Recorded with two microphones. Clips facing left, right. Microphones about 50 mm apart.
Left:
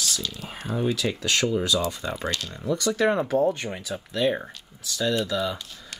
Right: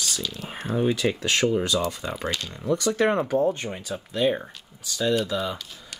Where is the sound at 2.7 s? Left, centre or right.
Right.